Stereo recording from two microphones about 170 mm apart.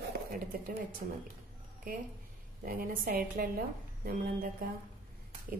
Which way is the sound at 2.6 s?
55° right (ahead or behind).